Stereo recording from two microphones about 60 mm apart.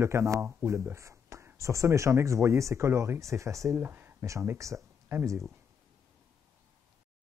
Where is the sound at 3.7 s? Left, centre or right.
Right.